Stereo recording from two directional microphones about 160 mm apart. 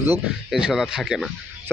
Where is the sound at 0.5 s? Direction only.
Centre (ahead or behind).